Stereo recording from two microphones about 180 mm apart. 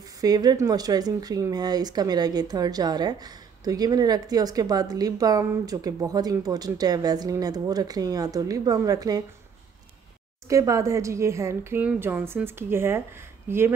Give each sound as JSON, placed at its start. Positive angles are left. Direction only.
{"t": 0.0, "sound": "speech", "side_deg": -20}
{"t": 10.5, "sound": "a woman's voice", "side_deg": -15}